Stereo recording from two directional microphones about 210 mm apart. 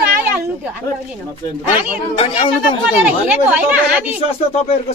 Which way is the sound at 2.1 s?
25° left (ahead or behind).